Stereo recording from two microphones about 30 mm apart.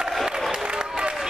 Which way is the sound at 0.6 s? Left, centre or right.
Right.